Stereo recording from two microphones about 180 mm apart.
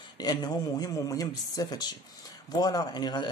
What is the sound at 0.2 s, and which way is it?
Speech, 20° left (ahead or behind).